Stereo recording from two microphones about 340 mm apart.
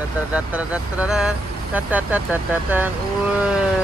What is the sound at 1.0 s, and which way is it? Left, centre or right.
Speech, centre.